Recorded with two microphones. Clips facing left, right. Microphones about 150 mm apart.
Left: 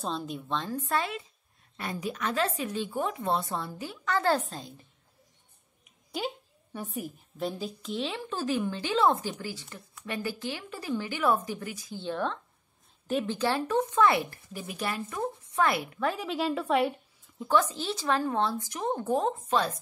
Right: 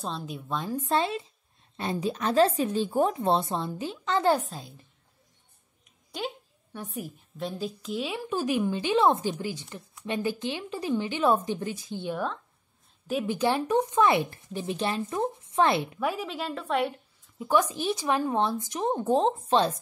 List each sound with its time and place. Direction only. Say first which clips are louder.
0.0 s speech: left 1 dB; centre (ahead or behind)
0.8 s a woman's voice: right 4 dB; 25° right (ahead or behind)
4.5 s speech: left 1 dB; 5° right (ahead or behind)
6.1 s a woman's voice: left 1 dB; centre (ahead or behind); by 12.0 s 25° right (ahead or behind)
12.0 s a woman's voice: left 1 dB; 10° right (ahead or behind)
13.3 s a woman's voice: right 5 dB; 15° right (ahead or behind)
16.0 s a woman's voice: right 1 dB; 10° right (ahead or behind)
16.3 s speech: left 3 dB; centre (ahead or behind)
17.4 s a woman's voice: right 1 dB; 15° right (ahead or behind)